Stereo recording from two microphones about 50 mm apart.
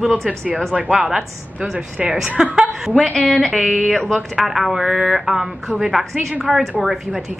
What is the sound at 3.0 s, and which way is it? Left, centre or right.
A woman's voice, centre.